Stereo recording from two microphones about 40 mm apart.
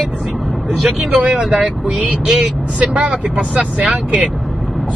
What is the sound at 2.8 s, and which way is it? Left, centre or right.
Speech, right.